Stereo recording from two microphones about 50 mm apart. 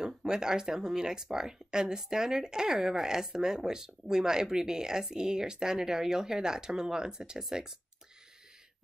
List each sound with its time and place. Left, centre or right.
0.0 s speech: centre